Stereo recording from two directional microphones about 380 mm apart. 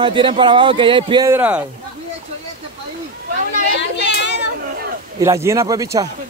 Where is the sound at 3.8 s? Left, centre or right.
Left.